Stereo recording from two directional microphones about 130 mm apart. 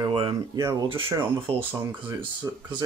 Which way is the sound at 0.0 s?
40° right (ahead or behind).